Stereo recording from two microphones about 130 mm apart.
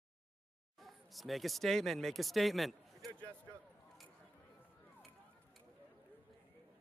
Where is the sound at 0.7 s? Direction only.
Centre (ahead or behind).